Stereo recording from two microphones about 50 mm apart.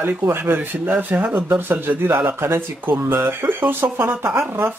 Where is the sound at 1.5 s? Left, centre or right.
Right.